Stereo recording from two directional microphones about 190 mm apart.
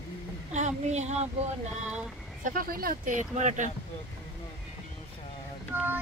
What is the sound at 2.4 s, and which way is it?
Speech, 50° right (ahead or behind).